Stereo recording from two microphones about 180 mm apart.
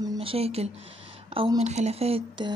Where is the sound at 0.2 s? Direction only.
35° right (ahead or behind).